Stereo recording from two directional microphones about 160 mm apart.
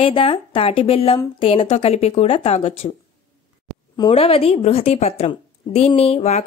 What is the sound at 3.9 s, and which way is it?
Speech, 35° left (ahead or behind).